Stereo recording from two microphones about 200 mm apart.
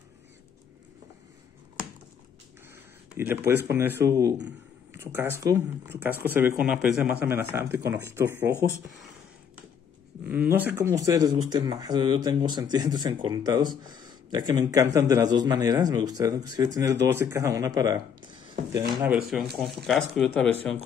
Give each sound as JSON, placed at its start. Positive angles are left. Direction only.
{"t": 2.7, "sound": "speech", "side_deg": -10}
{"t": 10.2, "sound": "speech", "side_deg": -10}
{"t": 19.5, "sound": "speech", "side_deg": 0}